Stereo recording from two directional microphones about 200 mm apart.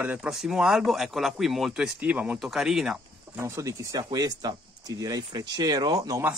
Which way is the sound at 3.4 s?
15° right (ahead or behind).